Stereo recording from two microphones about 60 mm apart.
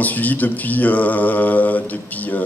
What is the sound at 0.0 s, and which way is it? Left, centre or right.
Speech, left.